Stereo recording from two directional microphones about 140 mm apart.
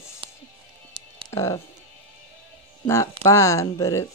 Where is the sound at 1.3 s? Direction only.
20° left (ahead or behind).